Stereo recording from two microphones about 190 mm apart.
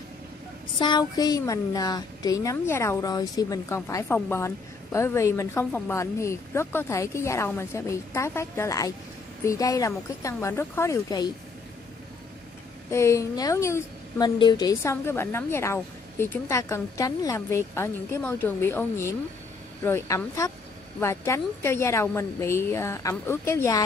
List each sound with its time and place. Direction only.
0.7 s a woman's voice: 25° left (ahead or behind)
12.9 s a woman's voice: 15° left (ahead or behind)